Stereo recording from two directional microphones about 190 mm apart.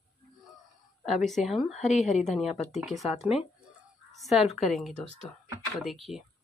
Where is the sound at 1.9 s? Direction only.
40° left (ahead or behind).